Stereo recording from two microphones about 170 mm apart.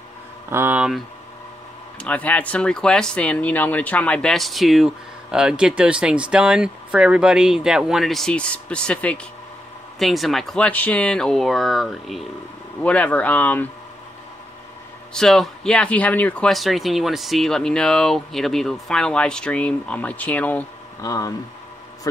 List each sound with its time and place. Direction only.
0.5 s speech: 10° right (ahead or behind)
2.0 s speech: 10° left (ahead or behind)
15.1 s speech: centre (ahead or behind)
21.0 s speech: 20° left (ahead or behind)